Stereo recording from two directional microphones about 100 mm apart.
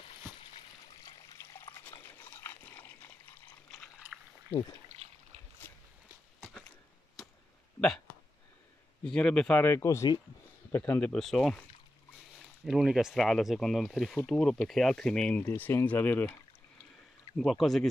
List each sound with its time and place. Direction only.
1.4 s trickle: 25° left (ahead or behind)
2.0 s liquid: 20° left (ahead or behind)
9.0 s speech: 10° left (ahead or behind)
9.6 s speech: 25° left (ahead or behind)
10.9 s speech: 15° left (ahead or behind)
11.1 s speech: centre (ahead or behind)
15.4 s speech: 20° left (ahead or behind)
17.4 s speech: centre (ahead or behind)